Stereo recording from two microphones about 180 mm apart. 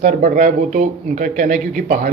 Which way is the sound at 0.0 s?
45° right (ahead or behind).